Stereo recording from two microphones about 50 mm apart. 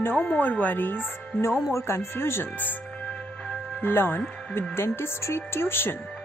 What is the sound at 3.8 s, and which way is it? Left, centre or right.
Speech, left.